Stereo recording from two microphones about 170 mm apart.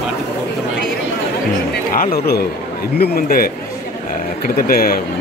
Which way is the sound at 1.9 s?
60° left (ahead or behind).